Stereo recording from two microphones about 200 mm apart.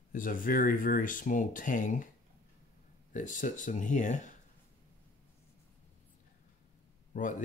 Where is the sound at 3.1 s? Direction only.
40° left (ahead or behind).